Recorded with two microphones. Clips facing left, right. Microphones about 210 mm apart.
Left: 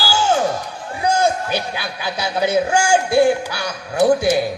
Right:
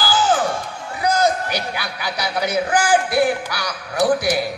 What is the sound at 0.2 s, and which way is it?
Music, 25° left (ahead or behind).